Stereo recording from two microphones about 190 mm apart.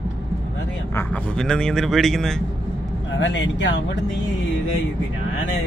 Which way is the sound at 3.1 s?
70° left (ahead or behind).